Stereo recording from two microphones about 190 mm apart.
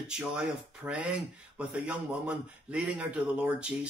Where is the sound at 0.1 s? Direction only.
5° right (ahead or behind).